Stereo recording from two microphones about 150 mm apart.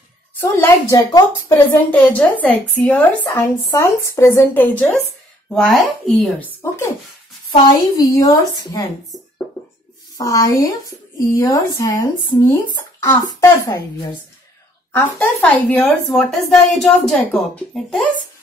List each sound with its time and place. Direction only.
0.4 s a woman's voice: 20° left (ahead or behind)
3.3 s speech: 20° left (ahead or behind)
5.5 s speech: 5° left (ahead or behind)
7.6 s speech: 25° left (ahead or behind)
10.1 s a woman's voice: 25° left (ahead or behind)
14.9 s a woman's voice: 10° left (ahead or behind)